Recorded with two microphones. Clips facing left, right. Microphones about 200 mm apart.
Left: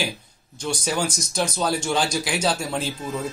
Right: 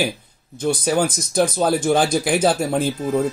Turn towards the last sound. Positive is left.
turn(degrees=-55)  # may be behind; listen again after turning